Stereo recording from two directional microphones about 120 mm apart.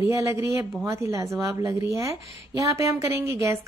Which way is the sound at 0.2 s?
25° right (ahead or behind).